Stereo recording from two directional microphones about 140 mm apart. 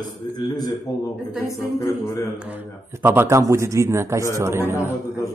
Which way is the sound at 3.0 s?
15° right (ahead or behind).